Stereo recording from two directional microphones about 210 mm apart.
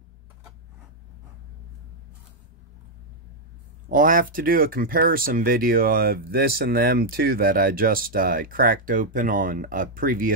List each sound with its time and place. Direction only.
3.9 s speech: 40° right (ahead or behind)